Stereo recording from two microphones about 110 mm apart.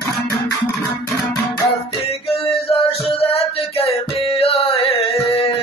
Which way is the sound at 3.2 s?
60° left (ahead or behind).